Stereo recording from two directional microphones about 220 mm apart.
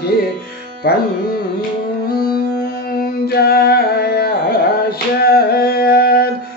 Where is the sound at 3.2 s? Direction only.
45° left (ahead or behind).